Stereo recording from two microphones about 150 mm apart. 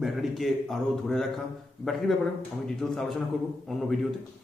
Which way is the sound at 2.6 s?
5° left (ahead or behind).